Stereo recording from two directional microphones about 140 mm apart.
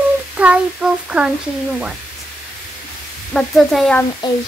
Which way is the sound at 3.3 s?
5° left (ahead or behind).